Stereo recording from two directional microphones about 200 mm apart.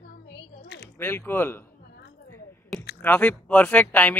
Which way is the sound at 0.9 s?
10° left (ahead or behind).